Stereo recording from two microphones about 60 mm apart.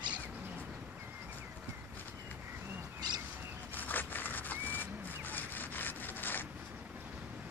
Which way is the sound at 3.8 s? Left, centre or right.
Left.